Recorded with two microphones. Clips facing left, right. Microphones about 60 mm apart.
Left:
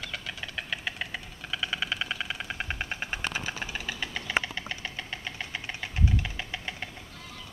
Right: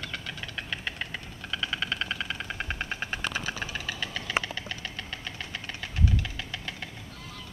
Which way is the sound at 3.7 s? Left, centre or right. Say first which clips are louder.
Even; centre.